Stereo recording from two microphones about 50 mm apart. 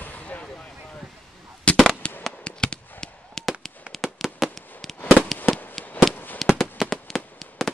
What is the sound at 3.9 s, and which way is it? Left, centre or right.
Fireworks, centre.